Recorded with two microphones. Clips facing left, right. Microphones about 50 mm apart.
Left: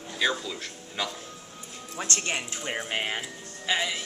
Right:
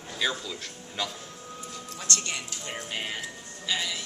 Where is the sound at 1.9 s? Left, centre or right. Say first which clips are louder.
Left 3 dB; left.